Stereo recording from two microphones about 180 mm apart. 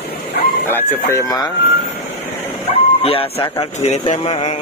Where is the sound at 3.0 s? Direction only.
30° left (ahead or behind).